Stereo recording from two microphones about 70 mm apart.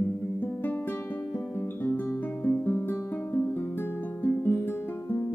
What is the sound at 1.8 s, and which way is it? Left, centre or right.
Music, left.